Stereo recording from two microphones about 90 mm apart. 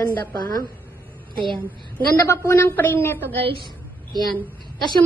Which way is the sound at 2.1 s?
30° left (ahead or behind).